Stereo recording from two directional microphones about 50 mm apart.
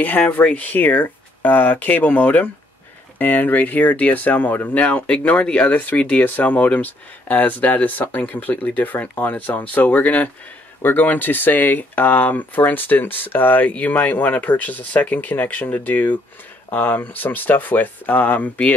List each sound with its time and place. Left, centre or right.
0.3 s speech: left